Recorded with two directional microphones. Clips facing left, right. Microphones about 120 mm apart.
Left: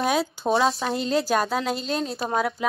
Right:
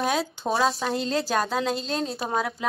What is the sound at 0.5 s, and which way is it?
Speech, 25° left (ahead or behind).